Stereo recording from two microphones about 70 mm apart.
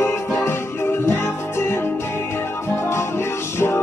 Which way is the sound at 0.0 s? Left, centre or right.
Left.